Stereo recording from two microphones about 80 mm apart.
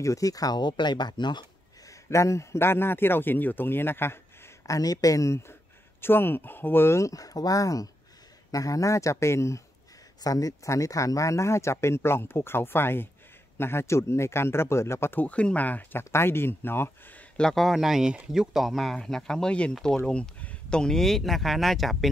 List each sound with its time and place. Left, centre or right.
0.0 s speech: left
1.9 s a man's voice: left
4.6 s speech: left
7.1 s speech: left
10.2 s speech: left
15.2 s a man's voice: centre
17.4 s speech: centre